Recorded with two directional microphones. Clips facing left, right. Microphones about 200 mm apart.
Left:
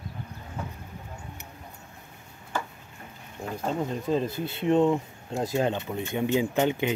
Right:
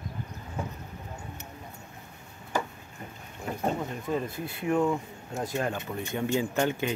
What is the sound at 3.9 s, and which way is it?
Speech, 30° left (ahead or behind).